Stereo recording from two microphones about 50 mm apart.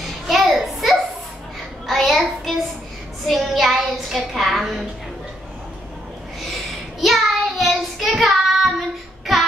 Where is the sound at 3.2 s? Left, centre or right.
Centre.